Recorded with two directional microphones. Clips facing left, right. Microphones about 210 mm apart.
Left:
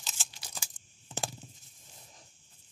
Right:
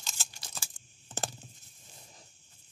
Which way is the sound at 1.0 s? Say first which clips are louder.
Even; centre (ahead or behind).